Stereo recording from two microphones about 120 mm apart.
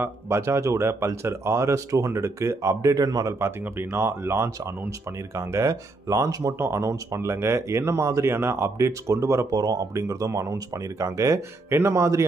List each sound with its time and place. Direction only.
0.0 s speech: 25° right (ahead or behind)